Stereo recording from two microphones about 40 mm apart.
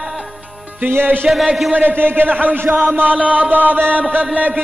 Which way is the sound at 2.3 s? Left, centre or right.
Right.